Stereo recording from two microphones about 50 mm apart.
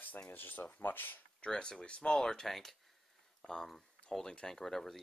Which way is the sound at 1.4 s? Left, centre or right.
Centre.